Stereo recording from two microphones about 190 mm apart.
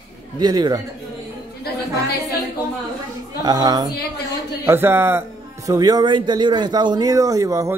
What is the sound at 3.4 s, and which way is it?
A man's voice, 20° right (ahead or behind).